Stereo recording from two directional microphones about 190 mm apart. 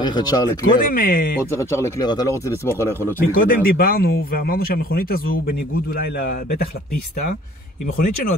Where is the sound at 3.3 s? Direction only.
50° left (ahead or behind).